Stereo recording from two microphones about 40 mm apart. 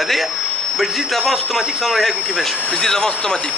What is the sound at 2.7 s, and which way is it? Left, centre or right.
Speech, centre.